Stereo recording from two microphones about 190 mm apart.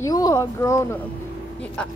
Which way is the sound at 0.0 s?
20° left (ahead or behind).